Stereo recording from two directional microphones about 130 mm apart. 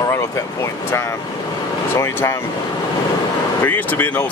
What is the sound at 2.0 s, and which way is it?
Speech, 20° left (ahead or behind).